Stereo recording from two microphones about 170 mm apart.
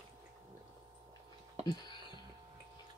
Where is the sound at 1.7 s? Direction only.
25° left (ahead or behind).